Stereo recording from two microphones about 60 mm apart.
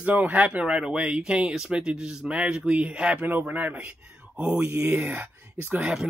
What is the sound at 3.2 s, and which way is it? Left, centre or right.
Speech, right.